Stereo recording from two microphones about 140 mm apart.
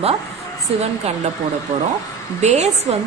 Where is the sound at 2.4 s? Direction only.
50° right (ahead or behind).